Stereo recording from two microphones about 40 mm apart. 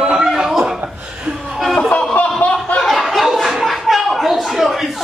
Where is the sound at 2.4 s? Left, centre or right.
Left.